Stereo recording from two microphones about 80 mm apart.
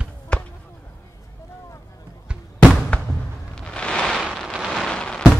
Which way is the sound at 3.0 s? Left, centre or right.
Centre.